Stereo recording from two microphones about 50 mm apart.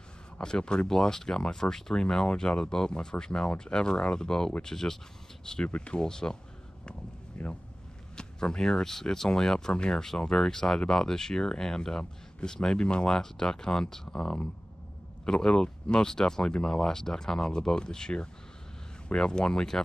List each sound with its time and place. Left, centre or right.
0.4 s speech: centre
7.3 s speech: left